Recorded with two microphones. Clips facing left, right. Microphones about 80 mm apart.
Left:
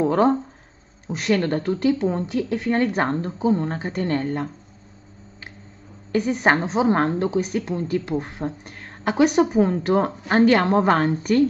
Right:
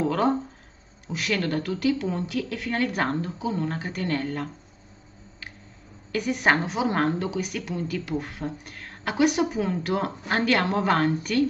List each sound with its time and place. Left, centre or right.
0.0 s a sound: left
1.0 s speech: left
6.1 s a woman's voice: left